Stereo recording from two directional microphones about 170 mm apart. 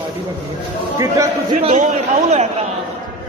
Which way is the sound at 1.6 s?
45° right (ahead or behind).